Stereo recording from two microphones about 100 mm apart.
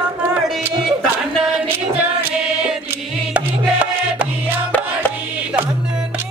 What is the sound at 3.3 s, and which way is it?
Music, 15° right (ahead or behind).